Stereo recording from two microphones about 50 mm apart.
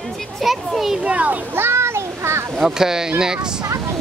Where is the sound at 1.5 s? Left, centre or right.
Right.